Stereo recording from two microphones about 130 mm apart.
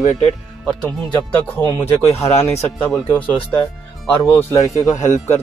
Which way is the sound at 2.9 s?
5° left (ahead or behind).